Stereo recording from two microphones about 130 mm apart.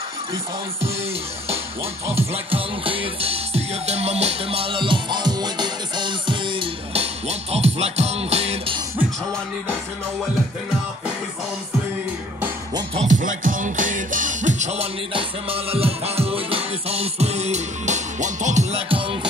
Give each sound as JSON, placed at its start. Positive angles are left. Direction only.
{"t": 2.0, "sound": "music", "side_deg": -50}
{"t": 13.1, "sound": "music", "side_deg": -90}